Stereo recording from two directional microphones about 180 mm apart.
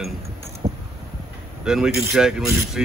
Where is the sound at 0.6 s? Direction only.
40° right (ahead or behind).